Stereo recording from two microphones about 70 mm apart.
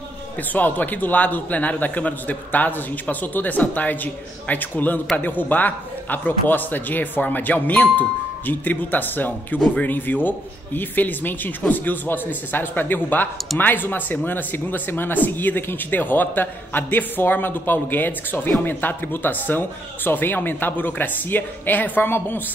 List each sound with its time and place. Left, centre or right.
0.4 s speech: left